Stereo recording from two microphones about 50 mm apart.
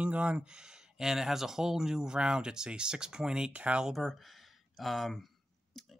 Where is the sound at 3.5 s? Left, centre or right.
Right.